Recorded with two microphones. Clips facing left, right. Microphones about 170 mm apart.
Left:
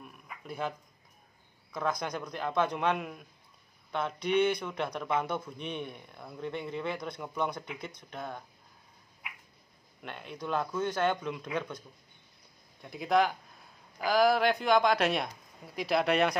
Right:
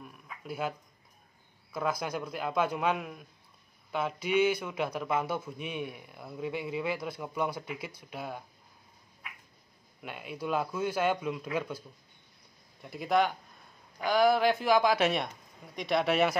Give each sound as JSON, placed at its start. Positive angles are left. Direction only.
{"t": 0.0, "sound": "a sound", "side_deg": -5}
{"t": 1.7, "sound": "a man's voice", "side_deg": -5}
{"t": 10.0, "sound": "a man's voice", "side_deg": -5}
{"t": 12.8, "sound": "speech", "side_deg": 0}